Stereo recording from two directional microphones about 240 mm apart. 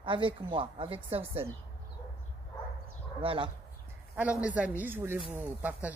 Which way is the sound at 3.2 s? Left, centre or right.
Right.